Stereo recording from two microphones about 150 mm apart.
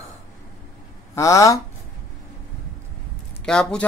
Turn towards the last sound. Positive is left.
turn(degrees=5)  # may be behind; listen again after turning